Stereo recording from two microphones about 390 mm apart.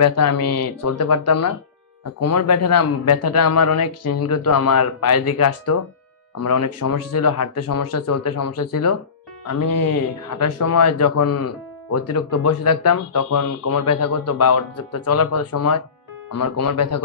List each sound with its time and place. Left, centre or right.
0.0 s speech: left